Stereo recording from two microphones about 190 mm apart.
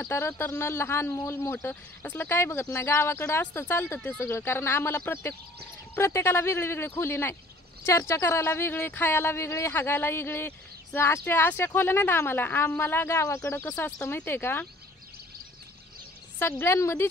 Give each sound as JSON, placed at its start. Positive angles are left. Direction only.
{"t": 0.0, "sound": "speech", "side_deg": 10}
{"t": 16.3, "sound": "speech", "side_deg": 10}